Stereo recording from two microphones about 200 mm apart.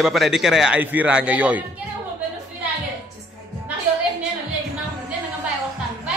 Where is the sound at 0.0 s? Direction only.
Centre (ahead or behind).